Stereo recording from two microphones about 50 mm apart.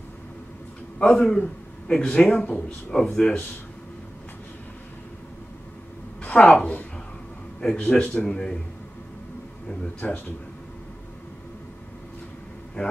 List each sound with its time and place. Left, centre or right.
0.9 s a man's voice: centre
2.3 s a man's voice: left
2.9 s speech: centre
6.2 s a woman's voice: left
9.9 s a man's voice: left
12.8 s a man's voice: left